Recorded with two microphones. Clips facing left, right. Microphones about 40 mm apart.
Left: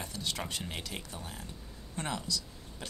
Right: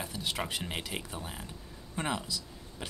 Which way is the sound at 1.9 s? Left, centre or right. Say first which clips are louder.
Right 2 dB; centre.